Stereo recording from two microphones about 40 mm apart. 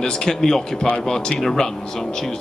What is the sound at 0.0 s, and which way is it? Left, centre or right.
A man's voice, centre.